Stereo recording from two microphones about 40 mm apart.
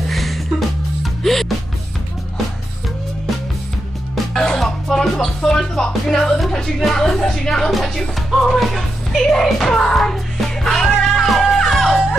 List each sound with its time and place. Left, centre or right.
0.1 s music: centre
4.1 s music: centre
7.2 s music: centre